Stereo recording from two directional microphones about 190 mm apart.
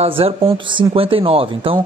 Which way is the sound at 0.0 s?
30° right (ahead or behind).